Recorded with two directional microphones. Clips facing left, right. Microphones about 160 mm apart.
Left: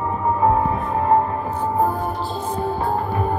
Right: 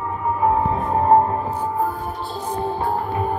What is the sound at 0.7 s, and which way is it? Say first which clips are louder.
Music: right 2 dB; 25° right (ahead or behind).